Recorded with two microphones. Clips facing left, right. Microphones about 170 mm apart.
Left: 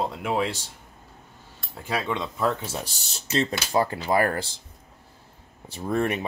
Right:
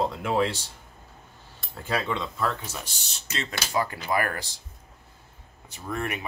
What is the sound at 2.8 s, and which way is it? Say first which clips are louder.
Speech: left 3 dB; 35° left (ahead or behind).